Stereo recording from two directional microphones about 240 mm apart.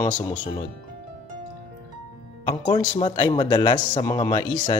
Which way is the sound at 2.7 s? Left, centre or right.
Centre.